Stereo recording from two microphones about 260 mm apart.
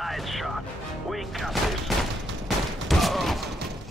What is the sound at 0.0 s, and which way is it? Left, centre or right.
Music, centre.